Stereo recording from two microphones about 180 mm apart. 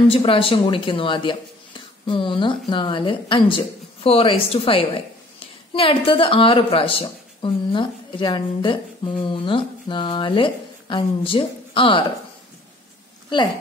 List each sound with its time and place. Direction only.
0.1 s a woman's voice: 30° left (ahead or behind)